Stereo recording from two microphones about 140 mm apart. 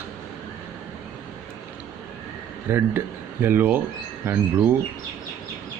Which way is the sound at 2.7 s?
15° right (ahead or behind).